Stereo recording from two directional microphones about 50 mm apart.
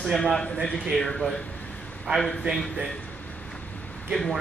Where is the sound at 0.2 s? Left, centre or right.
Centre.